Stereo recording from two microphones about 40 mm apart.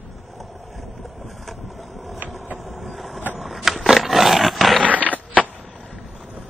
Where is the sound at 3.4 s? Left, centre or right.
Centre.